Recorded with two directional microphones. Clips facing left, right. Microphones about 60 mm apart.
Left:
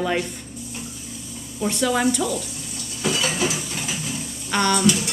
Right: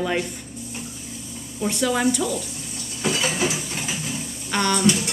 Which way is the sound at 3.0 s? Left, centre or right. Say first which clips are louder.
Even; right.